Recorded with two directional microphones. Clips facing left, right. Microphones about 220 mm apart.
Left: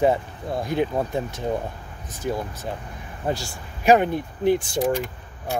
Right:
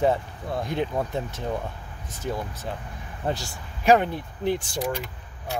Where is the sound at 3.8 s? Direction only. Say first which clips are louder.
Left 2 dB; 10° left (ahead or behind).